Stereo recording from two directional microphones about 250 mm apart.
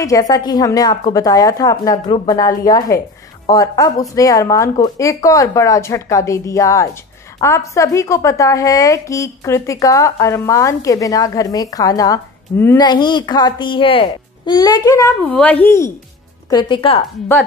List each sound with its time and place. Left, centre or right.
0.0 s a woman's voice: centre